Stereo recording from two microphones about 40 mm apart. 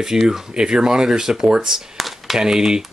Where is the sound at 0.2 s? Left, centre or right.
Centre.